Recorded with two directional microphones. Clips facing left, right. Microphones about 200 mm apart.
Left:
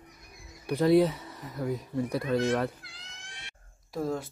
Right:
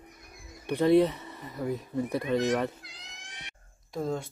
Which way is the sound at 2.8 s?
20° right (ahead or behind).